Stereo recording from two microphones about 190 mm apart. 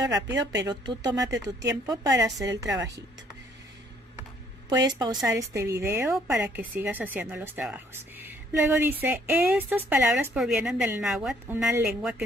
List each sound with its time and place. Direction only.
0.0 s speech: 20° right (ahead or behind)
0.4 s a woman's voice: 65° right (ahead or behind)
0.7 s speech: 20° right (ahead or behind)
4.9 s speech: 20° right (ahead or behind); by 12.2 s 5° right (ahead or behind)